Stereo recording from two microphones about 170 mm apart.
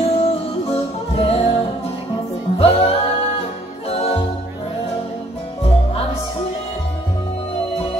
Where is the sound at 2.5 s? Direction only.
35° left (ahead or behind).